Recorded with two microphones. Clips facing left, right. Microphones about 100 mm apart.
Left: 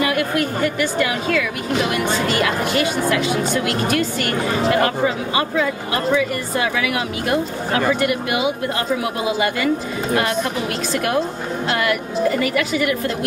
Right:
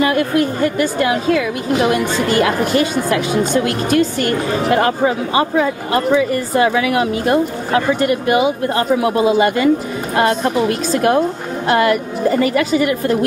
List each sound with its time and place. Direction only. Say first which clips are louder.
0.0 s a woman's voice: right 5 dB; 30° right (ahead or behind)